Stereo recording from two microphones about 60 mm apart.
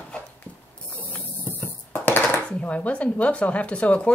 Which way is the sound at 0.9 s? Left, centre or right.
Left.